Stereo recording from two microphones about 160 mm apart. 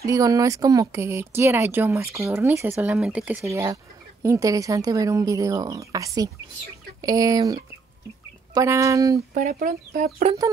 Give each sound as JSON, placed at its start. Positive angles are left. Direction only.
{"t": 0.0, "sound": "speech", "side_deg": -20}
{"t": 3.4, "sound": "speech", "side_deg": -20}
{"t": 9.3, "sound": "speech", "side_deg": -65}